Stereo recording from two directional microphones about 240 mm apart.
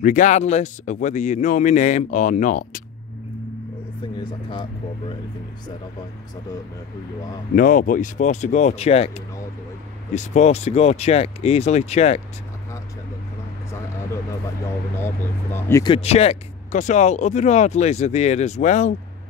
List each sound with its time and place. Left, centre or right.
0.0 s speech: left
4.2 s speech: left
7.5 s speech: left
15.0 s speech: centre; by 18.9 s left